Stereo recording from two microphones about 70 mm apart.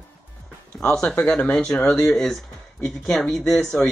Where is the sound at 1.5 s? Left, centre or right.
Centre.